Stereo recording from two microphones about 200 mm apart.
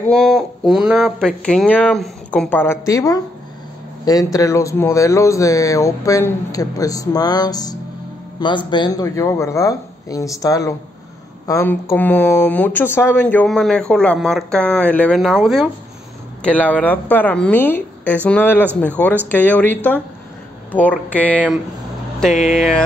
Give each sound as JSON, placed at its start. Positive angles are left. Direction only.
{"t": 0.1, "sound": "speech", "side_deg": 0}
{"t": 22.3, "sound": "speech", "side_deg": 35}
{"t": 22.6, "sound": "speech", "side_deg": 0}